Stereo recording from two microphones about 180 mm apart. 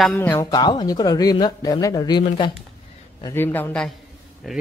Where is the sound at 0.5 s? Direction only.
25° left (ahead or behind).